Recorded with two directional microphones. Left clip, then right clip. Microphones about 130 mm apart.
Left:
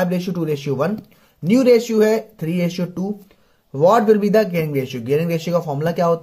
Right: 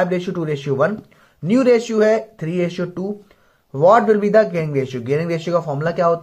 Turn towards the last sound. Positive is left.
turn(degrees=50)  # may be behind; listen again after turning